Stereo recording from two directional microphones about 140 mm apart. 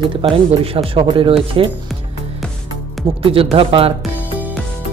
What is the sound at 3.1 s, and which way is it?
Speech, 40° right (ahead or behind).